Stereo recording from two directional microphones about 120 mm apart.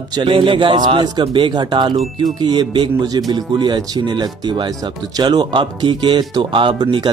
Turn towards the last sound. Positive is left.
turn(degrees=-45)  # may be behind; listen again after turning